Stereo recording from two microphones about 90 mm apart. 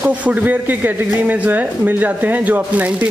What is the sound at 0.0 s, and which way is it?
Speech, 15° right (ahead or behind).